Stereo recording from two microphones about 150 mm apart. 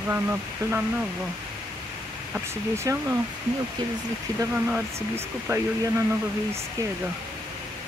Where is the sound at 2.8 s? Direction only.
20° right (ahead or behind).